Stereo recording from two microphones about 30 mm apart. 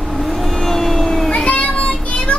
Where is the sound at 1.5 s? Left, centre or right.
Left.